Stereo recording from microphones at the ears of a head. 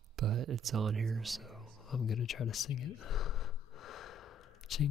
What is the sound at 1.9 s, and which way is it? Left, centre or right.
Gasp, left.